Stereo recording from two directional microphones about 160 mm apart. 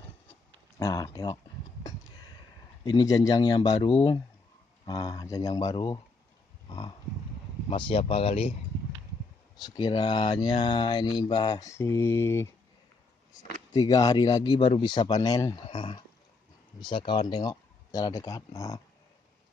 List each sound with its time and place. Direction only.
0.7 s a sound: 20° left (ahead or behind)
2.8 s speech: 25° left (ahead or behind)
9.6 s speech: 25° left (ahead or behind)
11.7 s mantra: 15° left (ahead or behind)
13.7 s speech: 25° left (ahead or behind)